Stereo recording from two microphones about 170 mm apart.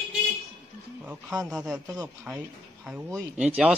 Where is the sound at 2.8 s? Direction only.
10° right (ahead or behind).